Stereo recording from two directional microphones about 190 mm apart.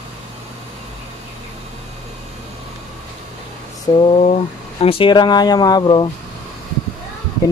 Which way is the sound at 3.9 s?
20° left (ahead or behind).